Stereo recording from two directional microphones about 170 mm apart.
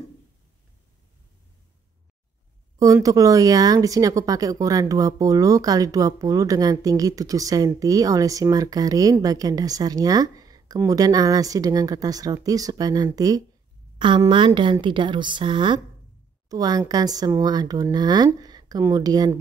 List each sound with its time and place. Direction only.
2.8 s speech: 20° right (ahead or behind)